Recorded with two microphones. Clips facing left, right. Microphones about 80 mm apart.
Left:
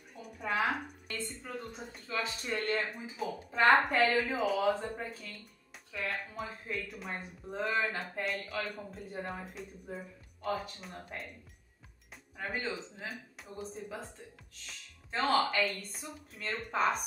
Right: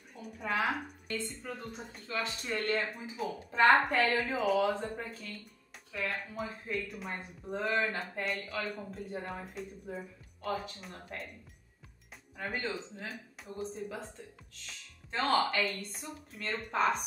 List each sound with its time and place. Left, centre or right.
0.1 s a sound: centre
1.1 s speech: centre
12.4 s speech: centre